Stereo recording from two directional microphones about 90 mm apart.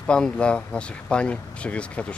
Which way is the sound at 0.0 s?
10° left (ahead or behind).